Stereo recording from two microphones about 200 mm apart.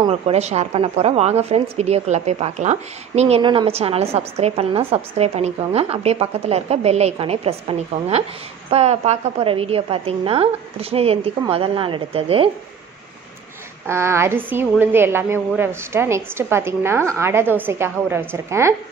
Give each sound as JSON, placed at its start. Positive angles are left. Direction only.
{"t": 0.0, "sound": "a woman's voice", "side_deg": -30}
{"t": 13.8, "sound": "a woman's voice", "side_deg": -15}